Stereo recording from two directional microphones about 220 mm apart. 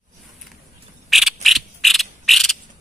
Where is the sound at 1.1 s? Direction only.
Centre (ahead or behind).